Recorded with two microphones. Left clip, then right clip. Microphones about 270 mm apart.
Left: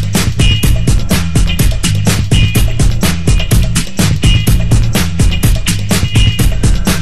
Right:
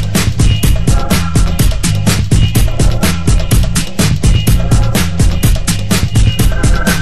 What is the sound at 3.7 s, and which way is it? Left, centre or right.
Music, left.